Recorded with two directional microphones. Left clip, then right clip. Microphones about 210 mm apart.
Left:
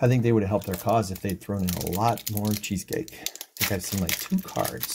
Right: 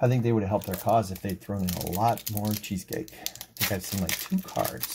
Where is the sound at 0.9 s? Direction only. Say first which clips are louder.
Right 1 dB; 25° left (ahead or behind).